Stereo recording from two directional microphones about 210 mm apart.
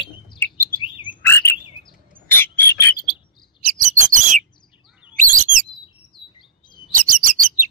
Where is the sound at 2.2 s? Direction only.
10° left (ahead or behind).